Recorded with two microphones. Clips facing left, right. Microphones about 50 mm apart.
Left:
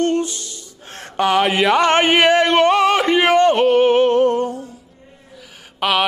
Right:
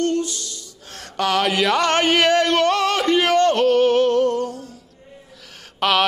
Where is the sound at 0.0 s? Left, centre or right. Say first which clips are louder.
Left 3 dB; left.